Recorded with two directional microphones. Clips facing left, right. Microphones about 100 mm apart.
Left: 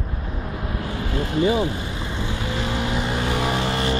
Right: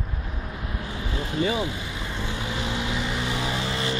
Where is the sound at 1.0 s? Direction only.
60° left (ahead or behind).